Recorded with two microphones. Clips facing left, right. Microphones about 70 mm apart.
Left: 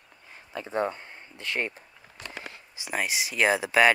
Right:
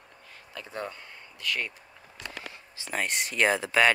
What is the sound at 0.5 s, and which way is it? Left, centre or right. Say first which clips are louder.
Speech: left 8 dB; left.